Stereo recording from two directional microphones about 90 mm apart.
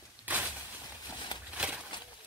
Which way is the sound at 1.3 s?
60° left (ahead or behind).